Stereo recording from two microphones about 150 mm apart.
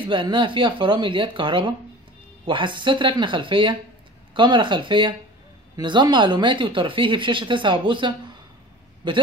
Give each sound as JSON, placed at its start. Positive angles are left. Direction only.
{"t": 0.0, "sound": "speech", "side_deg": -35}